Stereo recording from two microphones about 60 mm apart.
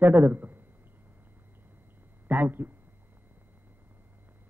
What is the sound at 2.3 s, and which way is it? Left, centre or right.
Speech, right.